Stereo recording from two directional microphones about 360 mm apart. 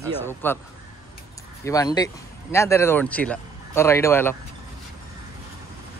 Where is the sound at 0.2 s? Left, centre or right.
Centre.